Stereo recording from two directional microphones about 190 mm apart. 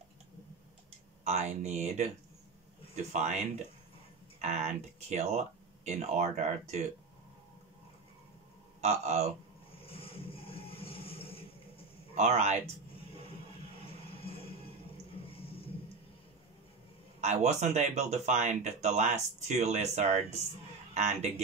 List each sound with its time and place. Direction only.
1.2 s speech: 35° right (ahead or behind)
8.8 s speech: 35° right (ahead or behind)
9.8 s a sound: 30° left (ahead or behind)
12.2 s speech: 35° right (ahead or behind)
13.8 s music: 30° left (ahead or behind)
17.2 s speech: 35° right (ahead or behind)